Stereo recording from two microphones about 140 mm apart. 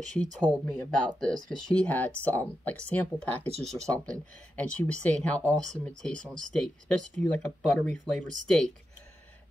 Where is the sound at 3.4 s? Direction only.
45° right (ahead or behind).